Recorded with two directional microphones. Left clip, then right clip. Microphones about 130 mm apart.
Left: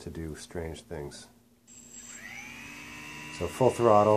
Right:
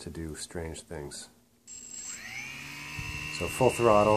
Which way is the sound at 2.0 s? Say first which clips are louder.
Right 3 dB; 30° right (ahead or behind).